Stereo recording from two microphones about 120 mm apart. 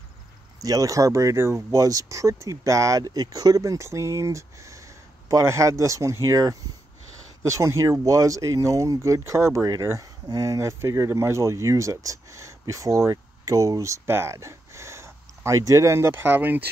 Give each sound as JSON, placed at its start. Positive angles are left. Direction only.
{"t": 0.6, "sound": "speech", "side_deg": -30}